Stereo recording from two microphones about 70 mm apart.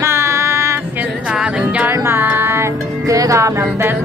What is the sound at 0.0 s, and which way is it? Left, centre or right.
Female singing, right.